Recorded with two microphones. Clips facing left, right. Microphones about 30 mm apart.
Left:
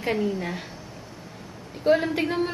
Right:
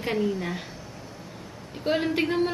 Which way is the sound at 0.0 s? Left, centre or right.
Centre.